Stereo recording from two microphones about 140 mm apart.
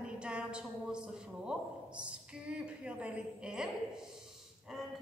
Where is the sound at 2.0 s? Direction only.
10° right (ahead or behind).